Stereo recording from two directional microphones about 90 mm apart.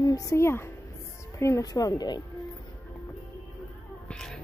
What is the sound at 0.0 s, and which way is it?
Speech, 40° left (ahead or behind).